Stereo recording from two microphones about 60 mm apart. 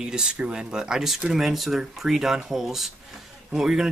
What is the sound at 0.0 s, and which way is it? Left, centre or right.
Speech, centre.